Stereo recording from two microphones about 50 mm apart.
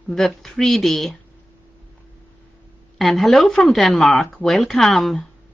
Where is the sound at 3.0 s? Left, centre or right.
Centre.